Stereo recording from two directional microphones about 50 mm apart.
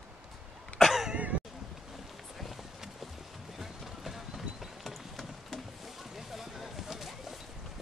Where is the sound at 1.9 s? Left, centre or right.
Centre.